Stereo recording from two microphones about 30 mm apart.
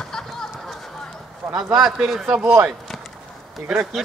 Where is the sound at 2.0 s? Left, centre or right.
Centre.